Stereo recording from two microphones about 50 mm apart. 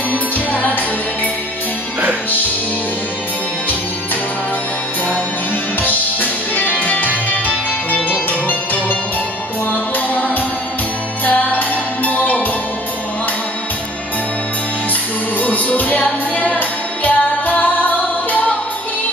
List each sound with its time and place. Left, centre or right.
0.5 s music: left
5.8 s music: left
15.4 s music: left